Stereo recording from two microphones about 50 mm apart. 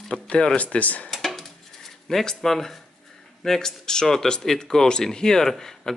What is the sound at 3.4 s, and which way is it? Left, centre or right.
Speech, centre.